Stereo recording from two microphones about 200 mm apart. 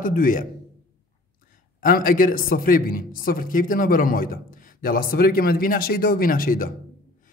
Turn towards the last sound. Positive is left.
turn(degrees=45)  # may be behind; listen again after turning